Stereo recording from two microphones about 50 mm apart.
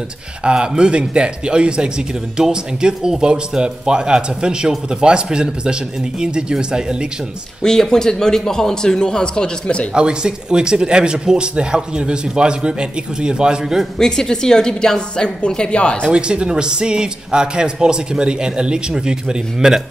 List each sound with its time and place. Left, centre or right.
0.4 s speech: centre
7.6 s a man's voice: centre
9.9 s speech: centre
13.9 s a man's voice: centre
16.1 s speech: centre